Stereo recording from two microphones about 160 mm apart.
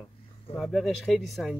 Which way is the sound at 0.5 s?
Centre (ahead or behind).